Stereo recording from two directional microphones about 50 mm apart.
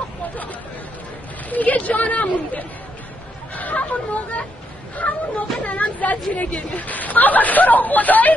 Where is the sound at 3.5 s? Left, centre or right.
Left.